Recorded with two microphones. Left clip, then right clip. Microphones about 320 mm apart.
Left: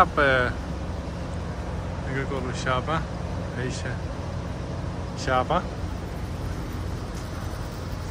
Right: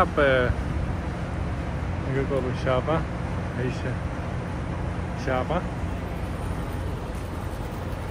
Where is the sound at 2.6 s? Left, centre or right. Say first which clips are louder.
Even; centre.